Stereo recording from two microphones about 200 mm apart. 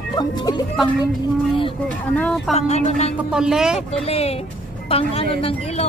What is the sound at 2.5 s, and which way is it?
Speech, 35° left (ahead or behind).